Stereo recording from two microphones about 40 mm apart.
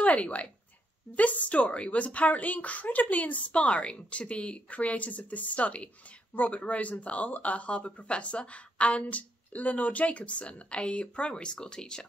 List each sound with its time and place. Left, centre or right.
0.0 s speech: left